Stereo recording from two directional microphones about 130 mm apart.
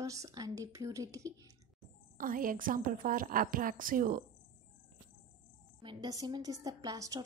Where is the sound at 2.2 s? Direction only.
90° right.